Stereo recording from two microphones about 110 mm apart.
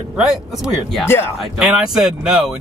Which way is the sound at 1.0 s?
20° left (ahead or behind).